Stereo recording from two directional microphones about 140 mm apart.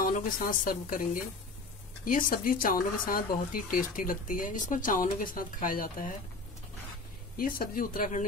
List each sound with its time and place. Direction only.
0.0 s speech: 80° left
7.3 s speech: 90° left